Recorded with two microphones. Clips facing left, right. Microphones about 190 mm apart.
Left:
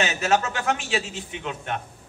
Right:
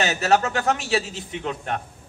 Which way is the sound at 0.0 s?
35° right (ahead or behind).